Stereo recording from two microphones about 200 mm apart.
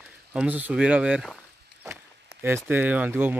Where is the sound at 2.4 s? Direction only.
10° right (ahead or behind).